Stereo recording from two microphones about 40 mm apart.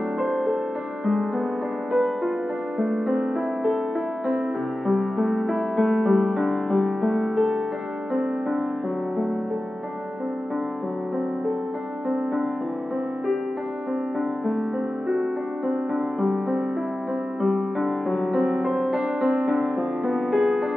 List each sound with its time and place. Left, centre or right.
1.9 s music: centre
4.8 s music: centre
15.0 s music: centre
17.6 s music: centre